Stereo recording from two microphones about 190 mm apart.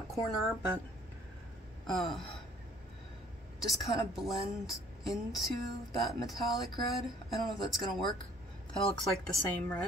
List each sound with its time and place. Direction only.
0.1 s a woman's voice: centre (ahead or behind)
1.9 s a woman's voice: centre (ahead or behind)
3.5 s a woman's voice: centre (ahead or behind)